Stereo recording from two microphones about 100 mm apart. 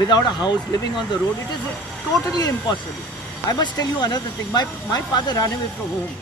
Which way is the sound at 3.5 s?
45° left (ahead or behind).